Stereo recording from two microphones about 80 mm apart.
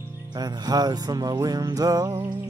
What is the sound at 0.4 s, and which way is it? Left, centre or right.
Music, right.